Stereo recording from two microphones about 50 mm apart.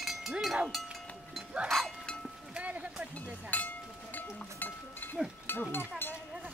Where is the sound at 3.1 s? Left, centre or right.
Left.